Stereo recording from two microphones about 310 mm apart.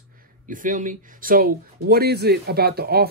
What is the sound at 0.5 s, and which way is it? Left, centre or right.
Speech, right.